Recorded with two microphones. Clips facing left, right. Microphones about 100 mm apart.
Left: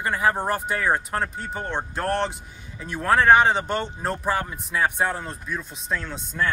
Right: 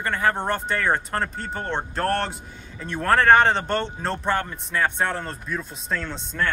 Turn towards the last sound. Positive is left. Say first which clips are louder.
# even
turn(degrees=5)  # may be behind; listen again after turning